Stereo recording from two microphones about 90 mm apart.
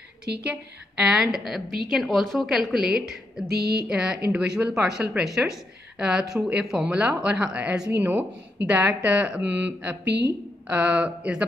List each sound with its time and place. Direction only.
0.5 s a woman's voice: 10° right (ahead or behind)
8.0 s a woman's voice: 20° right (ahead or behind)